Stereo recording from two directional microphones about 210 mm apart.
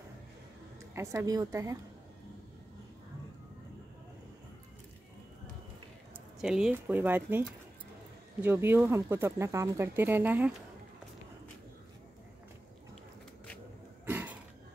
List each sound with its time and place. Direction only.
0.9 s speech: 15° right (ahead or behind)
6.4 s speech: 5° right (ahead or behind)
14.0 s a sound: 10° right (ahead or behind)